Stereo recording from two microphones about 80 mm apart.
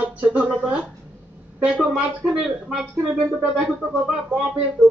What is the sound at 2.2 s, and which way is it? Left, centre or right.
Speech, centre.